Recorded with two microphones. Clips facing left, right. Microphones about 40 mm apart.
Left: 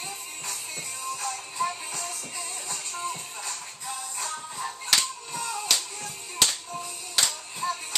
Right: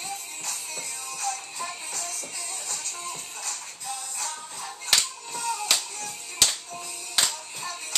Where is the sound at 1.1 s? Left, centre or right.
Centre.